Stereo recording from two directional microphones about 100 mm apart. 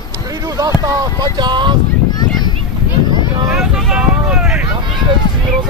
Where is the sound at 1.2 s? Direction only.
45° right (ahead or behind).